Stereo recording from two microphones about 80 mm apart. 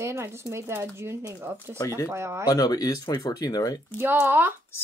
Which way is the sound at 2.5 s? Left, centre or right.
Left.